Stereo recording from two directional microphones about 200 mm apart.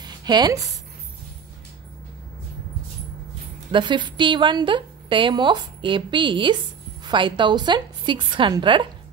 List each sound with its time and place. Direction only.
0.0 s speech: 20° right (ahead or behind)
3.7 s a woman's voice: 25° right (ahead or behind)